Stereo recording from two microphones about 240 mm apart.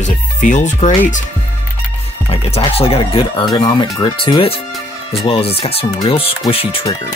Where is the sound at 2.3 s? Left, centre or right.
Left.